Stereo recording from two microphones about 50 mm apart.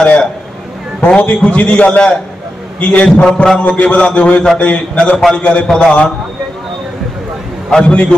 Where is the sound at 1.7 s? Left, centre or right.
Left.